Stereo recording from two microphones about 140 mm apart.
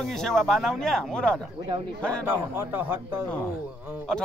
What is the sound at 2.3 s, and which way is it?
Speech, 15° right (ahead or behind).